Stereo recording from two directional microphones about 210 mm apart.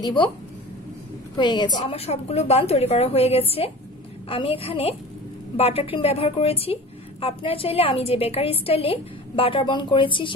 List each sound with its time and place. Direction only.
0.0 s a woman's voice: 20° left (ahead or behind)
1.3 s a woman's voice: 20° left (ahead or behind)